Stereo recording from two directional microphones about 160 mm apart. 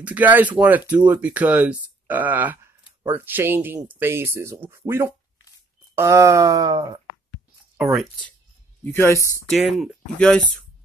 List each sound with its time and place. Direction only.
0.0 s speech: 10° right (ahead or behind)
8.8 s speech: 15° left (ahead or behind)
9.5 s speech: centre (ahead or behind)